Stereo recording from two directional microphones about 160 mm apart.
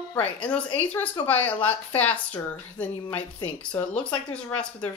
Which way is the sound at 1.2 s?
10° left (ahead or behind).